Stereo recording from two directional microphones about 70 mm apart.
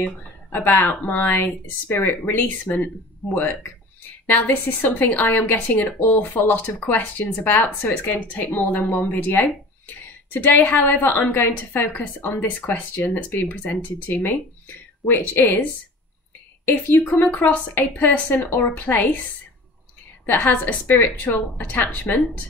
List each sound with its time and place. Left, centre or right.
0.0 s speech: left
20.2 s speech: left